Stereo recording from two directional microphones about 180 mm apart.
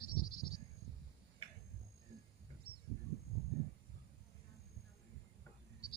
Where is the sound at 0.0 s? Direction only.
55° left (ahead or behind).